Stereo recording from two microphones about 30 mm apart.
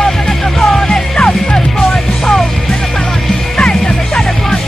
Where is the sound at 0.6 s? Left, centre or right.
Left.